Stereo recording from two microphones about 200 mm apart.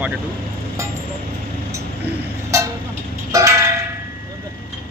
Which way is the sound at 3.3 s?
15° right (ahead or behind).